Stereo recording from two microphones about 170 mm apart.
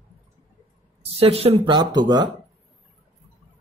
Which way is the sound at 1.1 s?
35° right (ahead or behind).